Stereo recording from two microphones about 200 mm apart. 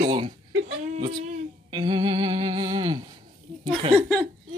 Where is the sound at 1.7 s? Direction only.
25° right (ahead or behind).